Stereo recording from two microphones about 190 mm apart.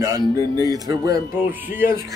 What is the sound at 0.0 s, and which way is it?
Speech, 20° right (ahead or behind).